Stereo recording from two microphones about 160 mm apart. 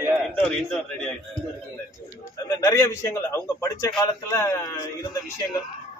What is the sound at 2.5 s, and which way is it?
A man's voice, 20° left (ahead or behind).